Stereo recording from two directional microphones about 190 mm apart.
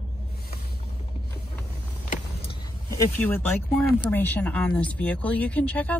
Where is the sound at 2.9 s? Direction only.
15° left (ahead or behind).